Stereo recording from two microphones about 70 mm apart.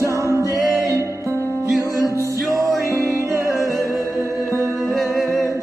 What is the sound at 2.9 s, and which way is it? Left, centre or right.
Music, right.